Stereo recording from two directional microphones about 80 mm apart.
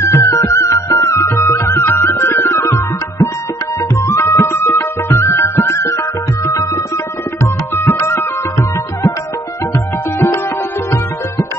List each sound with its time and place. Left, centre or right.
0.0 s music: left
6.4 s tabla: left
7.7 s tabla: left
10.1 s music: left